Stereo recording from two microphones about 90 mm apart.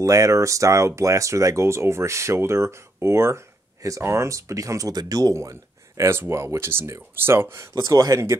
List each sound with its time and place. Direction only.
0.0 s speech: 40° right (ahead or behind)
7.7 s speech: 40° right (ahead or behind)